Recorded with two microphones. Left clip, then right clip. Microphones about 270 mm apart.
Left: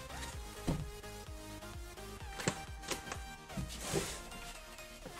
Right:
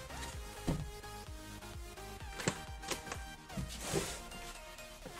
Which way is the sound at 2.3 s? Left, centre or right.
Centre.